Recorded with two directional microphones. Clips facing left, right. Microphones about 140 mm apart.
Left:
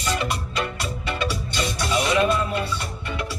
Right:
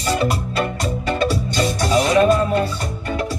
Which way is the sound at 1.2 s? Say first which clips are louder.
Right 7 dB; 40° right (ahead or behind).